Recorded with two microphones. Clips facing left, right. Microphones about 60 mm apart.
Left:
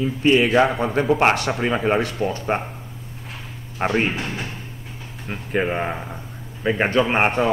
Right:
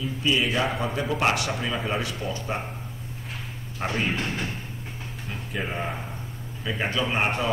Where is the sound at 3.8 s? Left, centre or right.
Left.